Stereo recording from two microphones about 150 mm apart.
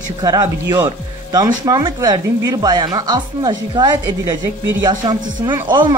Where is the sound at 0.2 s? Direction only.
25° right (ahead or behind).